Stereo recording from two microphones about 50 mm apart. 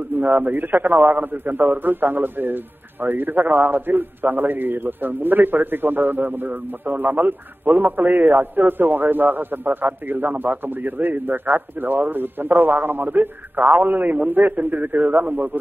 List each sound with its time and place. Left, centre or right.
0.1 s a man's voice: right